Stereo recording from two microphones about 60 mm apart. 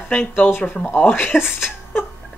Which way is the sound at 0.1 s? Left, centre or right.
Left.